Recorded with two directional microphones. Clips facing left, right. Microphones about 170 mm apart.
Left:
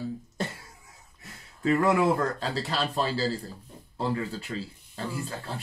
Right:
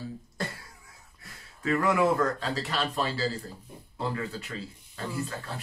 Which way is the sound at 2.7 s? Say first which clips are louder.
Left 3 dB; 30° left (ahead or behind).